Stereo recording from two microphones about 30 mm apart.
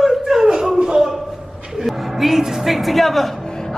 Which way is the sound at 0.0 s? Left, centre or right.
Centre.